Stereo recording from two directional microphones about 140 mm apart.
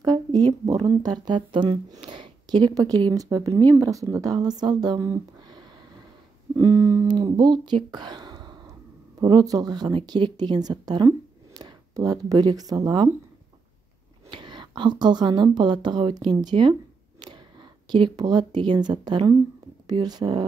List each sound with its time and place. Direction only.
0.0 s a sound: 30° right (ahead or behind)
0.8 s speech: 30° right (ahead or behind)
14.3 s speech: 35° right (ahead or behind)
17.9 s speech: 35° right (ahead or behind)